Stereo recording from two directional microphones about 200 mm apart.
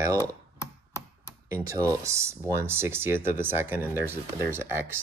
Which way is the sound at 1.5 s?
15° right (ahead or behind).